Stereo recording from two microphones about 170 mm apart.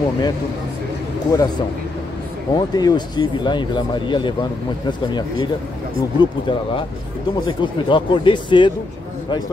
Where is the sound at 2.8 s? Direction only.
25° left (ahead or behind).